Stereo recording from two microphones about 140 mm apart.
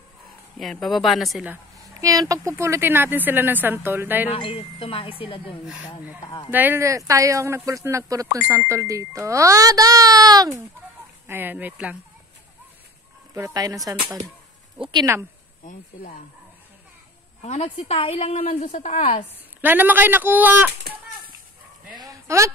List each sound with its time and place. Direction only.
0.6 s speech: centre (ahead or behind)
2.0 s speech: 25° right (ahead or behind)
4.3 s speech: 45° left (ahead or behind)
6.2 s speech: 30° left (ahead or behind)
6.5 s speech: 15° right (ahead or behind)
11.2 s speech: 15° right (ahead or behind)
13.3 s speech: 25° right (ahead or behind)
17.4 s a woman's voice: 50° left (ahead or behind)
19.6 s speech: 15° right (ahead or behind)
22.0 s a sound: 20° right (ahead or behind)